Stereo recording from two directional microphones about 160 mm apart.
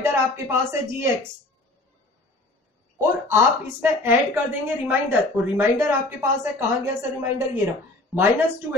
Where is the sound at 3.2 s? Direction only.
15° right (ahead or behind).